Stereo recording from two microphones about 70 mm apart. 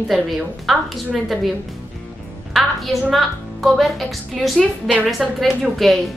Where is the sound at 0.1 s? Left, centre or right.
Centre.